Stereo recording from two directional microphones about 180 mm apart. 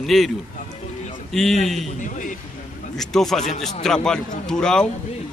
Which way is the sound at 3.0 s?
Centre (ahead or behind).